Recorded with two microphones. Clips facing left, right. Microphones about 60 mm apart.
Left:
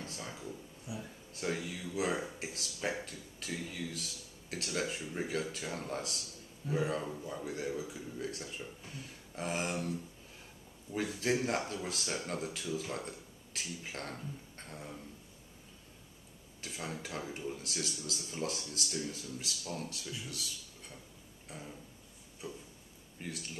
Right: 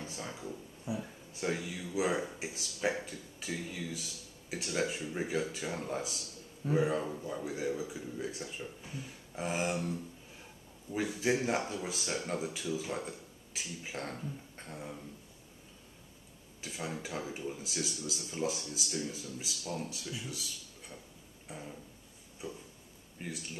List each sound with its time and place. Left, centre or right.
0.0 s speech: centre
0.9 s speech: right
1.3 s speech: centre
16.6 s speech: centre
21.5 s a sound: centre
23.1 s speech: centre